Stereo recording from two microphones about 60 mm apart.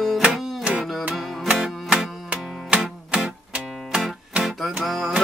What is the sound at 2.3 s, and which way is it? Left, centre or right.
Music, right.